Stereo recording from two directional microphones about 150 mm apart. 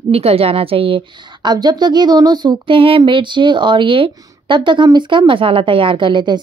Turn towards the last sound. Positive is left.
turn(degrees=-30)  # may be behind; listen again after turning